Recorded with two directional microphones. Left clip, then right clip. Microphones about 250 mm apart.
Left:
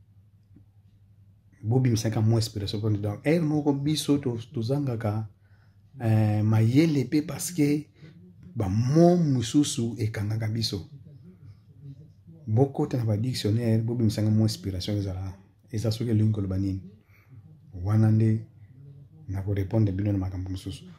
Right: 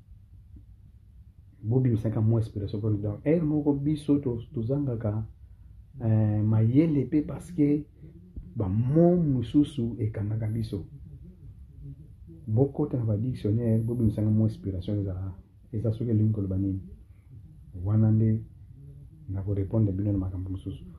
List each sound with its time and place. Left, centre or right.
1.7 s speech: left
12.5 s speech: left
17.8 s speech: left
19.3 s speech: left